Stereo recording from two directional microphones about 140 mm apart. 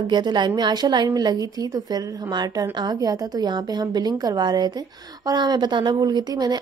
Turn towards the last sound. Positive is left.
turn(degrees=-30)  # may be behind; listen again after turning